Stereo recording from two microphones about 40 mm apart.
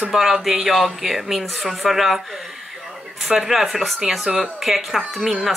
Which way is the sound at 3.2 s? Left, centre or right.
Centre.